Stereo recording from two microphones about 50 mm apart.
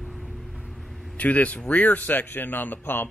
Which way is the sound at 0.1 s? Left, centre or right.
Centre.